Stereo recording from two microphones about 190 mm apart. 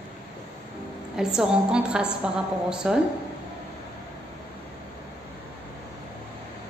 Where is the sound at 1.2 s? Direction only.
5° right (ahead or behind).